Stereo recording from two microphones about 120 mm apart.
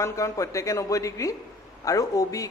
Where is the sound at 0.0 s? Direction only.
25° left (ahead or behind).